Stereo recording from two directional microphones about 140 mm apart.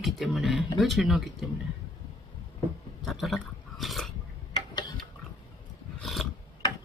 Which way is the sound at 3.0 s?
Centre (ahead or behind).